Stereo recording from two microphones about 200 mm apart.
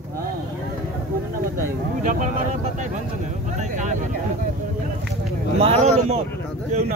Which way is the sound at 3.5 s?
35° right (ahead or behind).